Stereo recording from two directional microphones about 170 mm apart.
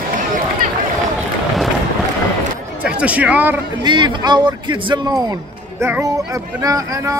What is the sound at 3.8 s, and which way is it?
Speech, 25° right (ahead or behind).